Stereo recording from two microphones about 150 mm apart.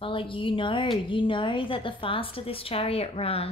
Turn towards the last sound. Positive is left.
turn(degrees=40)  # may be behind; listen again after turning